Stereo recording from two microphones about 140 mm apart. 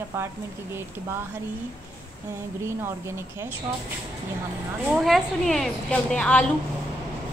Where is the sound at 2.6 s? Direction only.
20° right (ahead or behind).